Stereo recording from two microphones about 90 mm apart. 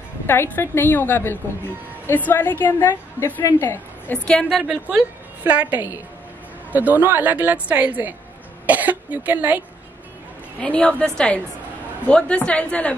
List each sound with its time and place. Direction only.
0.3 s a woman's voice: 25° left (ahead or behind)
4.3 s a woman's voice: 5° left (ahead or behind)
5.4 s a woman's voice: 15° right (ahead or behind)
10.6 s a woman's voice: 15° left (ahead or behind)